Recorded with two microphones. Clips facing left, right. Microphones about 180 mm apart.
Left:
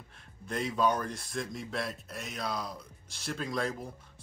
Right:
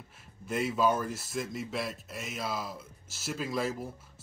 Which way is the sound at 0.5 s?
5° right (ahead or behind).